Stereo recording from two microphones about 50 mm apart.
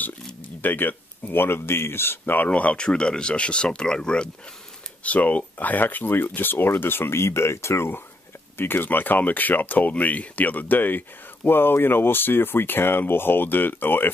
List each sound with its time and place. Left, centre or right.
0.6 s speech: left
2.4 s speech: left
5.0 s speech: left
8.5 s speech: left